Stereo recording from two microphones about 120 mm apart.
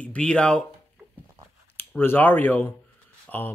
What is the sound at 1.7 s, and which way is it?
Speech, 20° left (ahead or behind).